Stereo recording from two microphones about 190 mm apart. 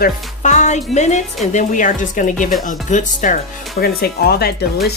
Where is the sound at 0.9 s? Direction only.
40° left (ahead or behind).